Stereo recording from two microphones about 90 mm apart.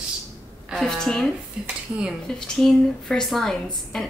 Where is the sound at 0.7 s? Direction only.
5° left (ahead or behind).